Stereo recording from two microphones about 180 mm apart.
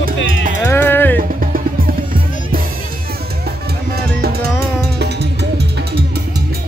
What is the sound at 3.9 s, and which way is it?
Music, 60° right (ahead or behind).